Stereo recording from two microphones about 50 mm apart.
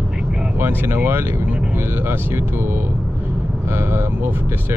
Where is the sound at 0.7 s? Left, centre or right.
Right.